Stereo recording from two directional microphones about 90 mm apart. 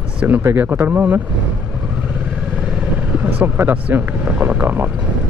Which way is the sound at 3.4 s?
20° right (ahead or behind).